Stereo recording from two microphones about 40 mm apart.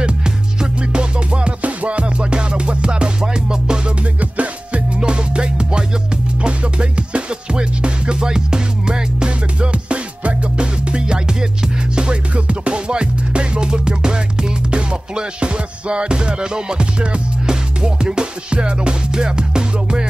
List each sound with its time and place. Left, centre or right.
0.0 s music: right
4.2 s music: right
5.0 s music: right